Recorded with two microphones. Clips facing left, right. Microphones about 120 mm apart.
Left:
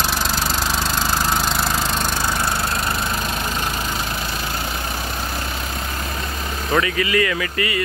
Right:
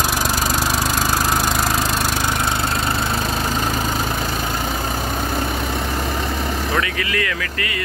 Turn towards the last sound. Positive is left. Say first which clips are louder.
# left 3 dB
turn(degrees=5)  # may be behind; listen again after turning